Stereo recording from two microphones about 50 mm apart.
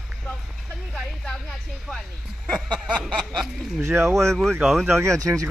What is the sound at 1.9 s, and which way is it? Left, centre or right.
Speech, centre.